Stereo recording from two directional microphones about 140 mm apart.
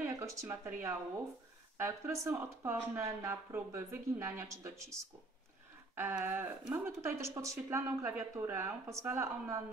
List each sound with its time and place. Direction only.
0.0 s speech: 20° right (ahead or behind)
5.9 s a sound: 15° right (ahead or behind)
6.7 s speech: 15° right (ahead or behind)